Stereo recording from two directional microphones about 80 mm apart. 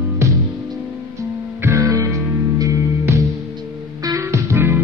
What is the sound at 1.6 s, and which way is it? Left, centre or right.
Music, right.